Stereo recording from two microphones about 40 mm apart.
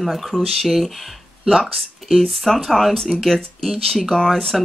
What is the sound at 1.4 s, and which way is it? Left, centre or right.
Speech, centre.